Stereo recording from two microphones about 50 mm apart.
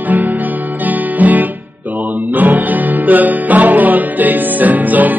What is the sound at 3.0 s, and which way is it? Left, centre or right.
Music, right.